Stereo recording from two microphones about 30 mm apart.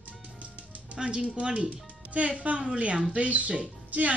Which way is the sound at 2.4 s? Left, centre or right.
Right.